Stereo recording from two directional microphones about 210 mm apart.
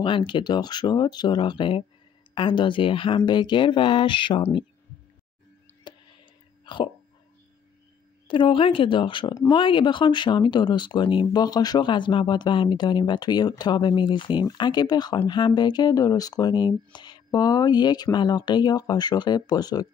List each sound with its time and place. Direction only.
0.0 s speech: 25° left (ahead or behind)
5.9 s a sound: 20° left (ahead or behind)
6.6 s hiccup: 20° left (ahead or behind)
8.3 s speech: 25° left (ahead or behind)